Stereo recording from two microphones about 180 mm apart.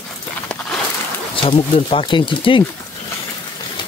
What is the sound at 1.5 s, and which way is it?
Speech, 30° left (ahead or behind).